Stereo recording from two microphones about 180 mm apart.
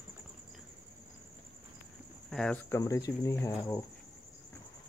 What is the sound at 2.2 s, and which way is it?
Speech, 5° left (ahead or behind).